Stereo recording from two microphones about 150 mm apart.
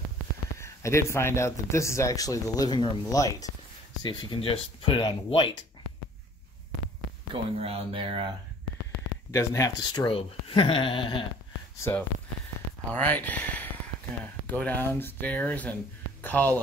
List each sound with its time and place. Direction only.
0.6 s speech: 20° left (ahead or behind)
4.0 s speech: 35° left (ahead or behind)
7.4 s speech: 40° right (ahead or behind)
9.3 s speech: 20° left (ahead or behind)
12.9 s speech: 10° left (ahead or behind)